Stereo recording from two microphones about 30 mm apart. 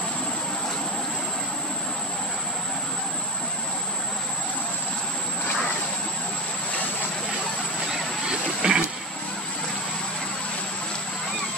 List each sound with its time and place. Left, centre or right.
8.3 s vehicle: right